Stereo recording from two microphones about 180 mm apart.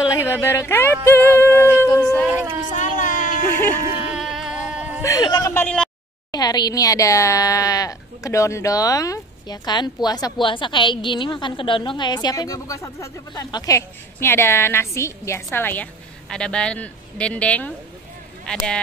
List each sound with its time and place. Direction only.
0.1 s a woman's voice: 15° left (ahead or behind)
2.1 s speech: 10° right (ahead or behind)
2.7 s a sound: 45° left (ahead or behind)
4.1 s a sound: centre (ahead or behind)
5.0 s speech: 20° left (ahead or behind)
5.5 s a woman's voice: 10° left (ahead or behind)
6.3 s a woman's voice: 20° left (ahead or behind); by 18.6 s 5° left (ahead or behind)